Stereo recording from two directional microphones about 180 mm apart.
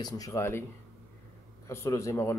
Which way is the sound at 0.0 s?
20° left (ahead or behind).